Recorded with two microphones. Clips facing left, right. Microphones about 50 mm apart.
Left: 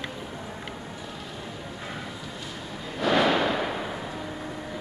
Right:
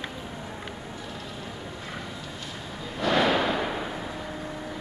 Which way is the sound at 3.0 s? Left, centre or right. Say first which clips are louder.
Left 1 dB; centre.